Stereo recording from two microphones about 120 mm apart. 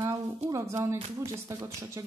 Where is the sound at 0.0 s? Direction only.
30° right (ahead or behind).